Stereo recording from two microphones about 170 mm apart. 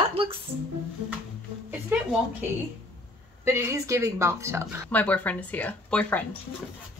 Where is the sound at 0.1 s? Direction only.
35° right (ahead or behind).